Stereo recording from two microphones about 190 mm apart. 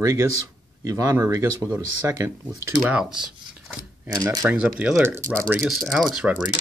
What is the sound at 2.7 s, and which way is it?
Speech, 5° right (ahead or behind).